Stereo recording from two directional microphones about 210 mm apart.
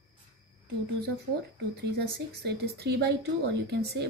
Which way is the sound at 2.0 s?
50° right (ahead or behind).